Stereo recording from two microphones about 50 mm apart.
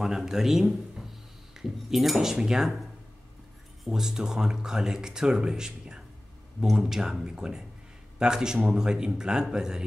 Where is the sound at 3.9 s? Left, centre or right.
Centre.